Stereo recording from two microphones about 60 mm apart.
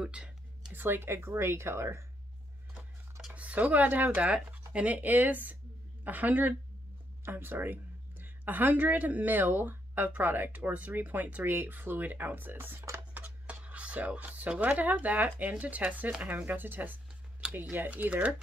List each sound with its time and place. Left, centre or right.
0.0 s a sound: centre
0.7 s speech: right
3.3 s speech: right